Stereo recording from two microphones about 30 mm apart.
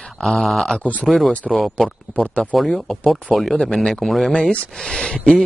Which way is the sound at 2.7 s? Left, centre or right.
Centre.